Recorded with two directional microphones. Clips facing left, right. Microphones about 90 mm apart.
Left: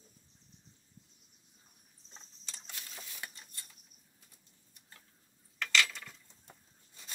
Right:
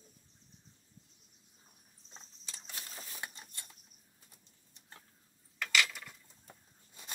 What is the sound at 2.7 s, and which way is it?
Printer, 30° right (ahead or behind).